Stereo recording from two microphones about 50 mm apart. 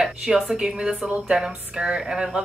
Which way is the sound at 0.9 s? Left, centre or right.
Right.